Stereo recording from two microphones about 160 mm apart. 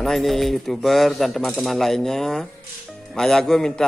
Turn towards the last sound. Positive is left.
turn(degrees=5)  # may be behind; listen again after turning